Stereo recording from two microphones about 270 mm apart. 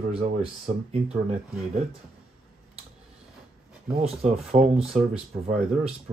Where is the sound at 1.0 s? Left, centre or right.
Centre.